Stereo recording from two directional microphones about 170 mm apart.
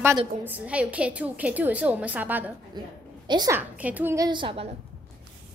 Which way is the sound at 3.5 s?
10° right (ahead or behind).